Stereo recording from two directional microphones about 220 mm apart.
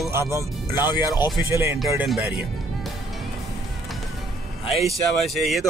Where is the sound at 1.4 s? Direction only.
15° right (ahead or behind).